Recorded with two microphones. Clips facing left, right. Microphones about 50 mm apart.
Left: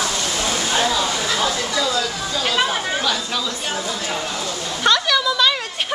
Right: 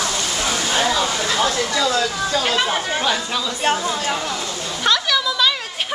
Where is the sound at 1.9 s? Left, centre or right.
Right.